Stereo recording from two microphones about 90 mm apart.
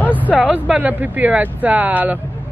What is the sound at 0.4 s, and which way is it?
Speech, 15° right (ahead or behind).